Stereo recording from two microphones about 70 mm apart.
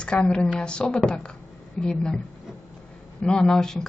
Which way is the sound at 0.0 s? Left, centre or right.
Centre.